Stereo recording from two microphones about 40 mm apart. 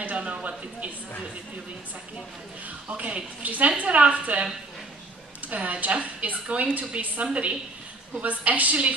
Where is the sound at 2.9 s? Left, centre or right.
Right.